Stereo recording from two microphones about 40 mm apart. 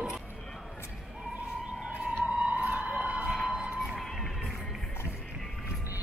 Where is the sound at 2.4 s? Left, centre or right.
Right.